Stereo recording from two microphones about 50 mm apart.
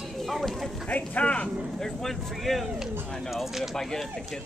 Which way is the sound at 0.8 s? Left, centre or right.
Left.